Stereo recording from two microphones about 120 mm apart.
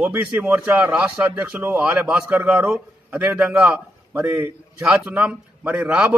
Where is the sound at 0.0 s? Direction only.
15° right (ahead or behind).